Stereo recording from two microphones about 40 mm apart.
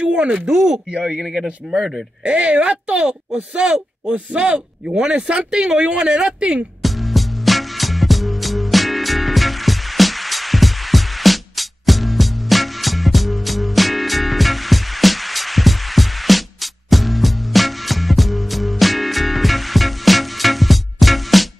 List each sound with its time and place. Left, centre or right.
0.0 s speech: right
2.2 s speech: right
6.8 s music: centre